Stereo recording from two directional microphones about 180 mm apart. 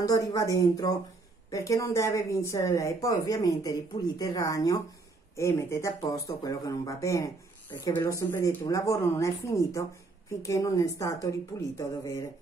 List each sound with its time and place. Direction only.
0.0 s a woman's voice: 20° left (ahead or behind)